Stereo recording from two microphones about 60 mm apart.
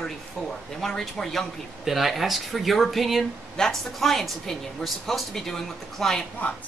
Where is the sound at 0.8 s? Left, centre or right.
Centre.